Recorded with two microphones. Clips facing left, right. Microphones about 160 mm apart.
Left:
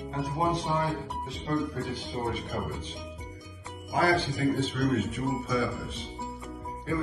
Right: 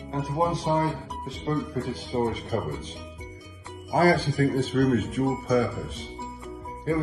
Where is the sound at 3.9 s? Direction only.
40° right (ahead or behind).